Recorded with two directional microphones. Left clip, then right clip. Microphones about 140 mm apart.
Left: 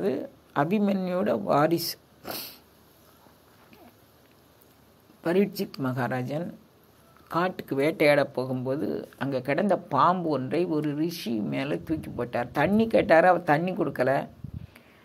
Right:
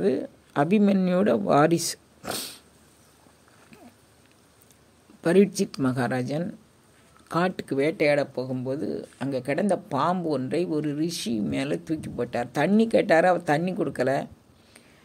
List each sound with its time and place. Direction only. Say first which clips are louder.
0.0 s speech: right 4 dB; 45° right (ahead or behind); by 2.6 s 65° right (ahead or behind)
5.2 s speech: right 5 dB; 55° right (ahead or behind)
7.7 s speech: even; 25° right (ahead or behind)
8.0 s speech: left 4 dB; 10° right (ahead or behind); by 14.8 s 30° right (ahead or behind)